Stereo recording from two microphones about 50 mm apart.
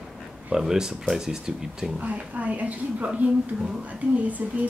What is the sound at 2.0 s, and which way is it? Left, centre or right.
Speech, right.